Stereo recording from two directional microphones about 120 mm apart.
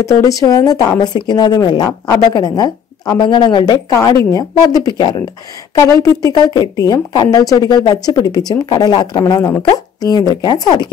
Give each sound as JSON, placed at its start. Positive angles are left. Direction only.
{"t": 0.0, "sound": "speech", "side_deg": 25}
{"t": 5.8, "sound": "a woman's voice", "side_deg": 25}